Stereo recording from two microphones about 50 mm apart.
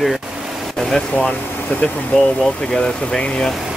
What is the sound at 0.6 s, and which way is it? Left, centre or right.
Vehicle, centre.